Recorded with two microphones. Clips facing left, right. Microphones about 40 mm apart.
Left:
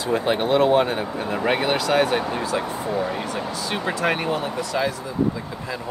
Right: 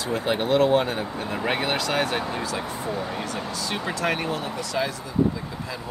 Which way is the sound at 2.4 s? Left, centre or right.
Left.